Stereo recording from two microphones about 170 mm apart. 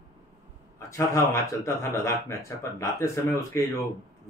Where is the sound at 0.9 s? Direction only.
20° left (ahead or behind).